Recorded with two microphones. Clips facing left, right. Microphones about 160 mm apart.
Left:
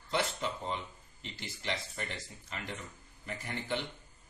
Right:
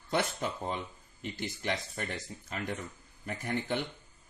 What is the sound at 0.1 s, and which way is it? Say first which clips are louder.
Speech: right 2 dB; 50° right (ahead or behind).